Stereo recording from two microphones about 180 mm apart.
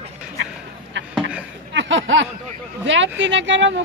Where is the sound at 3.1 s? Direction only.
90° right.